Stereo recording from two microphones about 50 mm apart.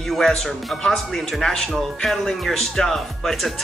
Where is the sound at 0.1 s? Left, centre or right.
Centre.